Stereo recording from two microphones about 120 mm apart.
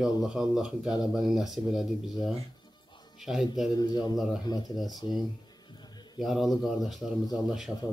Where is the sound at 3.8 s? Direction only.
35° left (ahead or behind).